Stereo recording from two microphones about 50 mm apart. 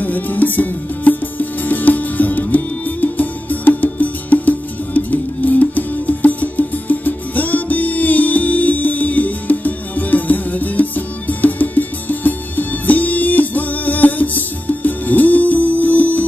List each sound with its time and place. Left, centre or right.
0.0 s music: left